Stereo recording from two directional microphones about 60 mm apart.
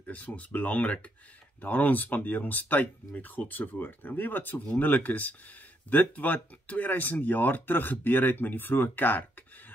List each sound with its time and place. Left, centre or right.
0.0 s speech: left